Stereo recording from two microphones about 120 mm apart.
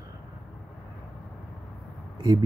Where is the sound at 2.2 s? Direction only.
35° right (ahead or behind).